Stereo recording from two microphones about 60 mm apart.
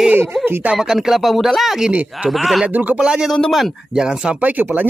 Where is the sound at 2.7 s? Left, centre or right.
Right.